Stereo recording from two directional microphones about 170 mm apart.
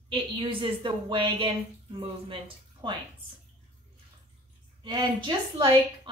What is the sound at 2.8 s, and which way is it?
Speech, 30° right (ahead or behind).